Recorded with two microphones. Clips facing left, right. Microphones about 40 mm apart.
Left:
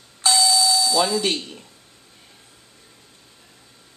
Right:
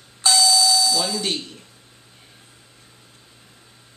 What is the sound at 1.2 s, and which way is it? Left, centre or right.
Speech, left.